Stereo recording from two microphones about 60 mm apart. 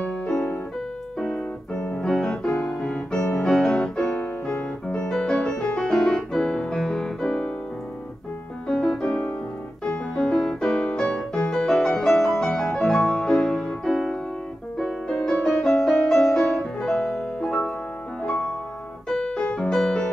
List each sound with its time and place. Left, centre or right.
0.0 s piano: left
2.0 s keyboard: centre
2.4 s keyboard: centre
3.3 s music: centre
4.0 s music: left
8.9 s music: centre
13.8 s music: centre
19.0 s piano: centre